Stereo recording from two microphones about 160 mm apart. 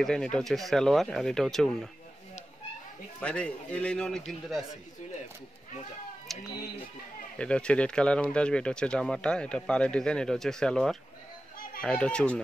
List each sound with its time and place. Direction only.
0.0 s speech: 5° left (ahead or behind)
3.2 s speech: 5° left (ahead or behind)
7.3 s speech: 5° left (ahead or behind)